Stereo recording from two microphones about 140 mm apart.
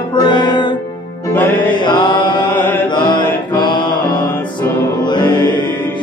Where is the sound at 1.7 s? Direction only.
35° left (ahead or behind).